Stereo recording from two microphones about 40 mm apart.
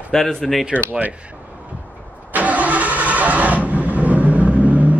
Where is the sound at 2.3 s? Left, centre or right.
Right.